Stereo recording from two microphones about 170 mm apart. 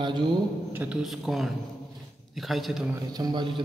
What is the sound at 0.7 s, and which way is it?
A man's voice, 5° right (ahead or behind).